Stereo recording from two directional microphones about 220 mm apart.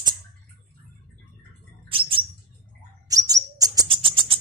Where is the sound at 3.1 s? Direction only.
15° right (ahead or behind).